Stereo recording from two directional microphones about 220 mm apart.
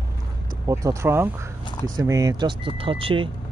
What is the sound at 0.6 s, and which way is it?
Speech, 15° right (ahead or behind).